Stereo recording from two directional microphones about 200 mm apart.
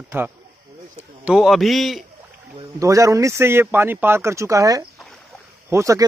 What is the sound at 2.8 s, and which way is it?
Speech, 15° right (ahead or behind).